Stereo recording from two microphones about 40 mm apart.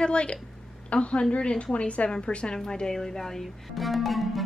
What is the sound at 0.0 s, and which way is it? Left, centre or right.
A woman's voice, left.